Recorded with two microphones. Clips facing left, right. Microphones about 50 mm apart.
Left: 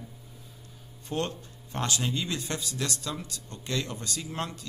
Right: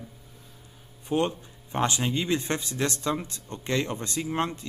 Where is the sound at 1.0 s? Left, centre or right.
Centre.